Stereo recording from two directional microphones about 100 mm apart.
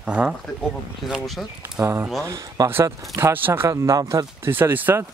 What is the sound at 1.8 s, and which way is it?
Speech, 25° right (ahead or behind).